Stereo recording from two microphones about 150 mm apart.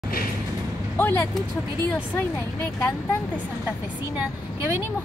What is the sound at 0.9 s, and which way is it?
Speech, 15° left (ahead or behind).